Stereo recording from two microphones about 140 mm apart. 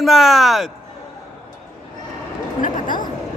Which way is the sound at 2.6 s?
70° left (ahead or behind).